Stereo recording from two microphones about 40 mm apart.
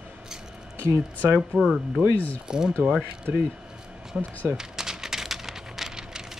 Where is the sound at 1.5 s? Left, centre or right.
Right.